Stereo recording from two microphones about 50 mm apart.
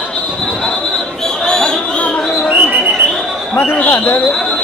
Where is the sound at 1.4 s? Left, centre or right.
Centre.